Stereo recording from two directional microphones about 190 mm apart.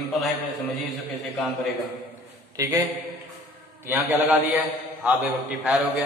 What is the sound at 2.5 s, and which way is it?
Speech, 20° right (ahead or behind).